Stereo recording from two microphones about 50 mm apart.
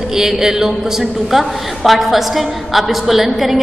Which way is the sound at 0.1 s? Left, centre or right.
Centre.